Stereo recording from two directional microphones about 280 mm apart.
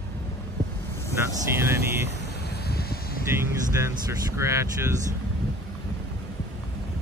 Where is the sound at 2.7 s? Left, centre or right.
Left.